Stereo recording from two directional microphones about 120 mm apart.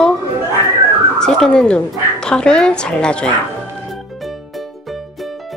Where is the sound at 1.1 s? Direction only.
5° left (ahead or behind).